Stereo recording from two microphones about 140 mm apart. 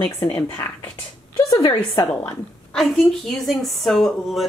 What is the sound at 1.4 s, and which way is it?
Speech, 25° left (ahead or behind).